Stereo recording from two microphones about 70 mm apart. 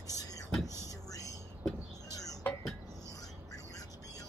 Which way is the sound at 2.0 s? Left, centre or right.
Left.